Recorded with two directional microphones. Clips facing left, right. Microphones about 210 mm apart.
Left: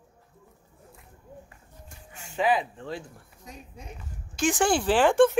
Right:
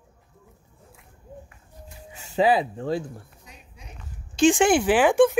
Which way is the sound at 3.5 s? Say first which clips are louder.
Left 6 dB; 45° left (ahead or behind).